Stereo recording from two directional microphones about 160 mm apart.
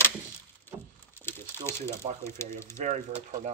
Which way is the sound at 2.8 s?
50° right (ahead or behind).